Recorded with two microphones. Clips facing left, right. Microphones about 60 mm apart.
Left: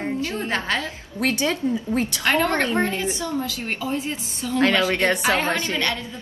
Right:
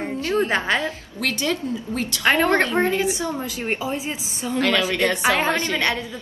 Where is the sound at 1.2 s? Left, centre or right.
Left.